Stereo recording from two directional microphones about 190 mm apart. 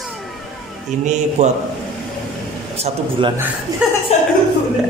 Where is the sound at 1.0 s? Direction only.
40° right (ahead or behind).